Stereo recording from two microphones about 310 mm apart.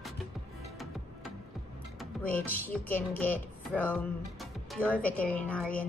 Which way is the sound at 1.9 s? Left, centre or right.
Centre.